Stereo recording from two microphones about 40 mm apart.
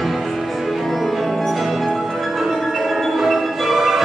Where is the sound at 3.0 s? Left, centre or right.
Centre.